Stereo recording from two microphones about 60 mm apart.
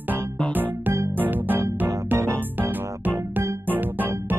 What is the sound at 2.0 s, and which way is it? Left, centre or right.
Music, right.